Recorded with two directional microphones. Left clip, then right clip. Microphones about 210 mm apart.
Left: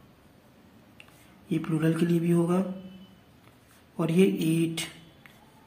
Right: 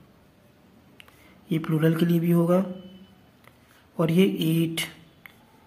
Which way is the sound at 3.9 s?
25° right (ahead or behind).